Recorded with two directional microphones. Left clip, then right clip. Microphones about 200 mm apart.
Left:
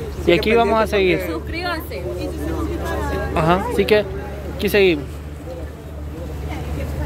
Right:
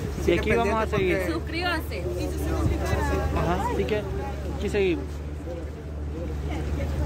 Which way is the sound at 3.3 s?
55° left (ahead or behind).